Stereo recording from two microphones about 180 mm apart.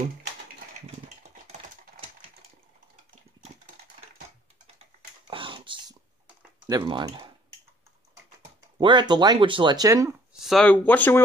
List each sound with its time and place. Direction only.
5.3 s computer keyboard: 30° right (ahead or behind)
8.7 s speech: 25° right (ahead or behind)
10.4 s speech: 5° left (ahead or behind)